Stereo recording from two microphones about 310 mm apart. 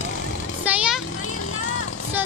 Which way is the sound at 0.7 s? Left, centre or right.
Centre.